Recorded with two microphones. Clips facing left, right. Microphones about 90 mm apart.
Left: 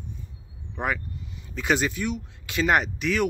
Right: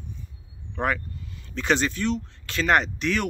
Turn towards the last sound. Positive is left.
turn(degrees=5)  # may be behind; listen again after turning